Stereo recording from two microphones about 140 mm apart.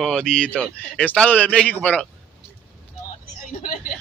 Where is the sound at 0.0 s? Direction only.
5° left (ahead or behind).